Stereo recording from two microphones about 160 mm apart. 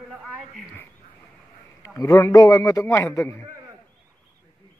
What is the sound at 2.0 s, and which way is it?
A man's voice, 20° left (ahead or behind).